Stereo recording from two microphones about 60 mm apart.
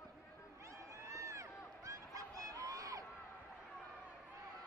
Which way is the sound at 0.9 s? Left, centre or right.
Right.